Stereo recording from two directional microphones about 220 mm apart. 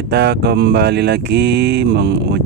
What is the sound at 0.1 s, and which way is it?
Speech, 50° right (ahead or behind).